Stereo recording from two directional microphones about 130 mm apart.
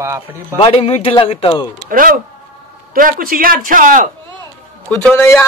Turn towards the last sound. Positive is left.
turn(degrees=15)  # may be behind; listen again after turning